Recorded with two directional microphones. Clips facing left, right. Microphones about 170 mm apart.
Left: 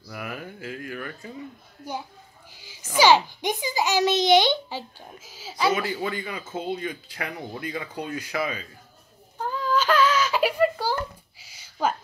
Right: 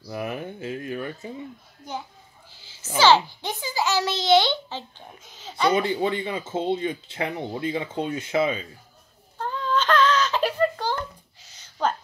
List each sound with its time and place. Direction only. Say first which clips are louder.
0.1 s speech: right 5 dB; 25° right (ahead or behind)
1.8 s a child's voice: left 1 dB; 10° left (ahead or behind)
2.5 s a sound: left 1 dB; 15° left (ahead or behind)
3.0 s a child's voice: even; 15° left (ahead or behind)
5.8 s speech: right 5 dB; 25° right (ahead or behind)
9.4 s whimper: left 1 dB; 10° left (ahead or behind)